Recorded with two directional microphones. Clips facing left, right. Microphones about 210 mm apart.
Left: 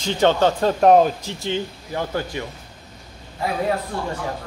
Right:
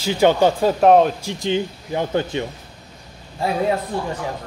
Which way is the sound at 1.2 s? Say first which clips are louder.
Right 4 dB; 15° right (ahead or behind).